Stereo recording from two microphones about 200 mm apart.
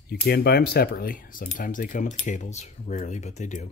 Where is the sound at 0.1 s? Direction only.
50° left (ahead or behind).